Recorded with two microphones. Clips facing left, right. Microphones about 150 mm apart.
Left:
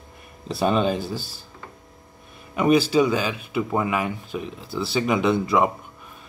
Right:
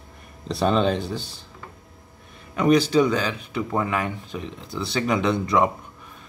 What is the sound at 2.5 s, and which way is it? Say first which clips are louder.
Speech: even; 10° left (ahead or behind).